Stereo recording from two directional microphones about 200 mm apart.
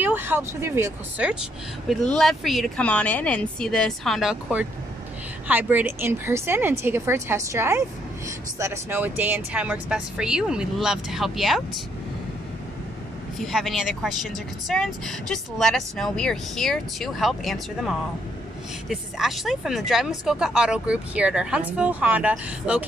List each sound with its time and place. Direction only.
0.0 s a woman's voice: 10° right (ahead or behind)
13.4 s speech: centre (ahead or behind)